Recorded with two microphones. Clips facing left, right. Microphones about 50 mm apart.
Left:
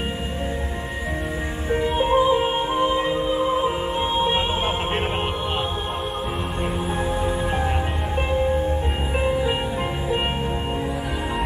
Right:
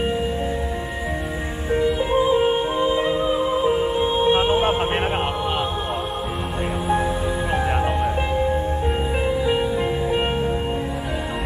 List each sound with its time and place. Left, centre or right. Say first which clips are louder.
1.9 s music: left 3 dB; left
2.2 s music: right 2 dB; centre
8.4 s music: left 2 dB; centre